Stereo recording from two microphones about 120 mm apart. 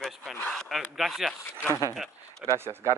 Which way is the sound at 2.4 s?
20° right (ahead or behind).